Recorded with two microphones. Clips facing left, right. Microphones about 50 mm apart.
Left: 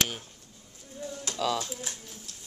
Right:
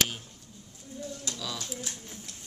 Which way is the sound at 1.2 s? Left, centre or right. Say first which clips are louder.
Left 12 dB; left.